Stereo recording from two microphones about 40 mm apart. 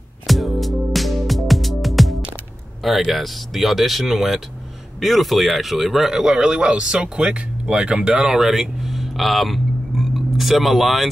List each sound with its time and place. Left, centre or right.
0.3 s music: centre
3.1 s speech: centre
8.4 s a sound: centre